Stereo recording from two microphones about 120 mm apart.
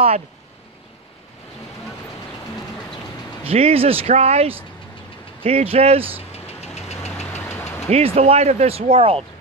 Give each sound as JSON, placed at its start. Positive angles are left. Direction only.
{"t": 3.4, "sound": "speech", "side_deg": -55}
{"t": 6.4, "sound": "vehicle", "side_deg": 65}
{"t": 7.9, "sound": "speech", "side_deg": -60}